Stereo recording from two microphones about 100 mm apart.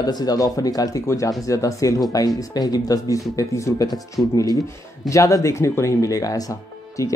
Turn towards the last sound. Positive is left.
turn(degrees=35)  # may be behind; listen again after turning